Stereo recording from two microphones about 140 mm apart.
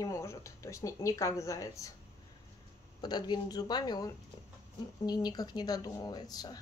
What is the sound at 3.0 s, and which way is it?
A woman's voice, 30° left (ahead or behind).